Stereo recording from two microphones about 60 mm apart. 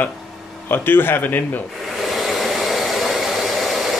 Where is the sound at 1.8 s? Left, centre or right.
Centre.